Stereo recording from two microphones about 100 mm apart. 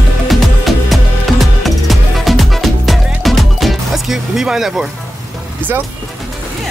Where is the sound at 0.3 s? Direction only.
Centre (ahead or behind).